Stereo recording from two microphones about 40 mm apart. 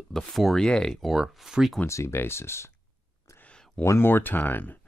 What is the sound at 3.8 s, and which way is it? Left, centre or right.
Speech, left.